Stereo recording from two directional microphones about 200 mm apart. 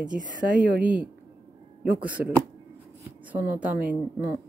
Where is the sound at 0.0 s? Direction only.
40° right (ahead or behind).